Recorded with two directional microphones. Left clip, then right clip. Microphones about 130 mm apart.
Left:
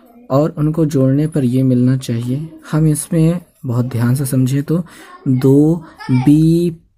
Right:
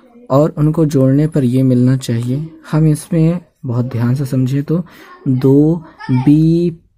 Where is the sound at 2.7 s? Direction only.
20° right (ahead or behind).